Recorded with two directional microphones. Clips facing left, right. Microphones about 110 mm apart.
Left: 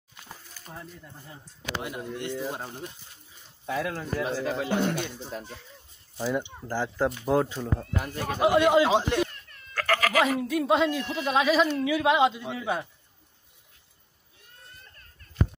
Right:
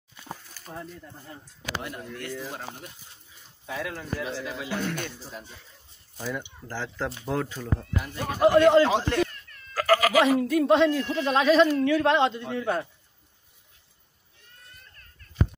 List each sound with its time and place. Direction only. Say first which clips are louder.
1.8 s speech: left 4 dB; 20° left (ahead or behind)
3.6 s speech: left 4 dB; 40° left (ahead or behind)
6.7 s a man's voice: left 5 dB; 15° left (ahead or behind)
7.8 s speech: left 1 dB; 45° left (ahead or behind)
8.4 s a man's voice: right 3 dB; 10° left (ahead or behind)
9.8 s a man's voice: right 4 dB; 5° right (ahead or behind)